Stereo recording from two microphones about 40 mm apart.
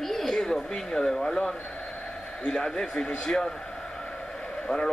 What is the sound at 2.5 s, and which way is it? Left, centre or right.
Speech, centre.